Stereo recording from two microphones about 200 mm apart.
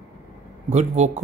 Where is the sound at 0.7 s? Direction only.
35° right (ahead or behind).